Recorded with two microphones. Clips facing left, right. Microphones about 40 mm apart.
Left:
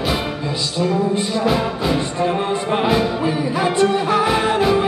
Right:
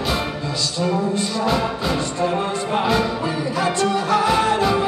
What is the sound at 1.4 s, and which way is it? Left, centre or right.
Music, centre.